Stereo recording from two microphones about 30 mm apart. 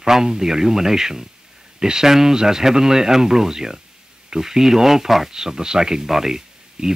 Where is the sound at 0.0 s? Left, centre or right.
Right.